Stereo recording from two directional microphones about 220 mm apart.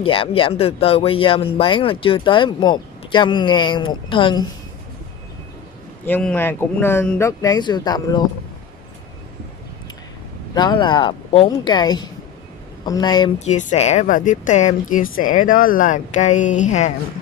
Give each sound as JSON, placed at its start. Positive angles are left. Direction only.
{"t": 0.0, "sound": "speech", "side_deg": 25}
{"t": 6.0, "sound": "speech", "side_deg": 10}
{"t": 10.5, "sound": "speech", "side_deg": 20}
{"t": 13.4, "sound": "speech", "side_deg": 35}